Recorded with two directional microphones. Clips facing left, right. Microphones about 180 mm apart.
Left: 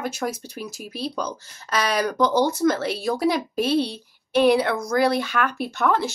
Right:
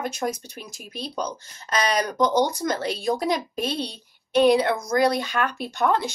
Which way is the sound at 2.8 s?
5° left (ahead or behind).